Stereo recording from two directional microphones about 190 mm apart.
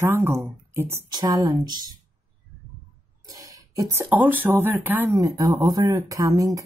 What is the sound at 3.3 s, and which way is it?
Speech, 20° right (ahead or behind).